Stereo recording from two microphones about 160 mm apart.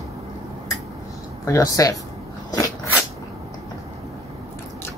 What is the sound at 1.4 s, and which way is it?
Speech, 20° left (ahead or behind).